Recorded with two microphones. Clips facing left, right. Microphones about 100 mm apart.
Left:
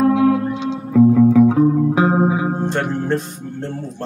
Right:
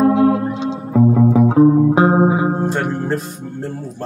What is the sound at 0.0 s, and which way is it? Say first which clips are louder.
Music: right 1 dB; 35° right (ahead or behind).